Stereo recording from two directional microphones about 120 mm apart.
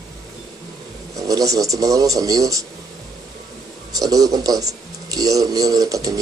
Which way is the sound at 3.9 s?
30° right (ahead or behind).